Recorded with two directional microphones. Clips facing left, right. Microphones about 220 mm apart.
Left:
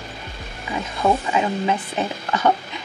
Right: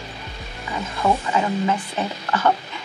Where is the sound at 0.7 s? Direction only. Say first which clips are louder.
Left 1 dB; 20° left (ahead or behind).